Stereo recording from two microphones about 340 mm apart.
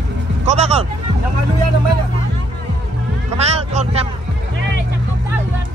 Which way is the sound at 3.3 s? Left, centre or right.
Centre.